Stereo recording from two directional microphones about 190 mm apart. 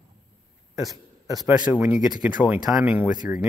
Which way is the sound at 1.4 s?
5° right (ahead or behind).